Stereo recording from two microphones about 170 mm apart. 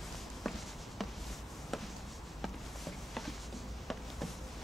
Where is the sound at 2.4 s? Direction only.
Centre (ahead or behind).